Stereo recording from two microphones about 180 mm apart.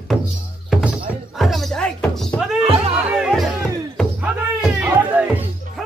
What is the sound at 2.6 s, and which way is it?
Music, 30° right (ahead or behind).